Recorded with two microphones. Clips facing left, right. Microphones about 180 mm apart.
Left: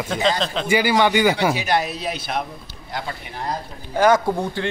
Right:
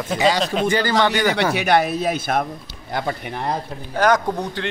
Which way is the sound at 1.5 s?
60° right (ahead or behind).